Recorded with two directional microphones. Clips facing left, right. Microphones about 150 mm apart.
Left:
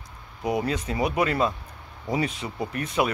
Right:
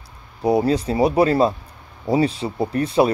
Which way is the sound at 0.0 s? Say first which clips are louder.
Right 8 dB; 35° right (ahead or behind).